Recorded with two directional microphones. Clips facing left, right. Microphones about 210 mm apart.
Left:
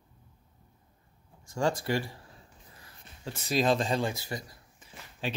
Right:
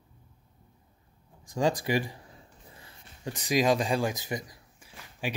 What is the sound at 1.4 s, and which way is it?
Speech, 15° right (ahead or behind).